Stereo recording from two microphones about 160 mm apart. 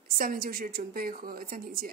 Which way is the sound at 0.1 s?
65° right (ahead or behind).